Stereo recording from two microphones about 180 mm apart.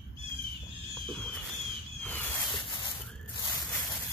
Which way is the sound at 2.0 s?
10° left (ahead or behind).